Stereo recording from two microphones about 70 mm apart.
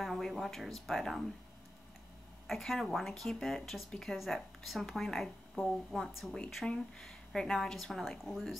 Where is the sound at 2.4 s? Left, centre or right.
Centre.